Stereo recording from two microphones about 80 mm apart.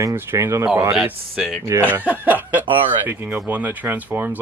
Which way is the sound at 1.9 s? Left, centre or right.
Right.